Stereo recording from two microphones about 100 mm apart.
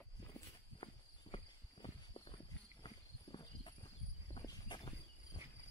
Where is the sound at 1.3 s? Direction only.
75° left (ahead or behind).